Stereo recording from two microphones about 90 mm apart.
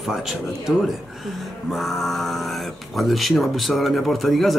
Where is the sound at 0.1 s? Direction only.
5° right (ahead or behind).